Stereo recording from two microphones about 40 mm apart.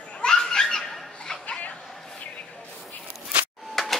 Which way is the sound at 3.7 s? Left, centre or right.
Centre.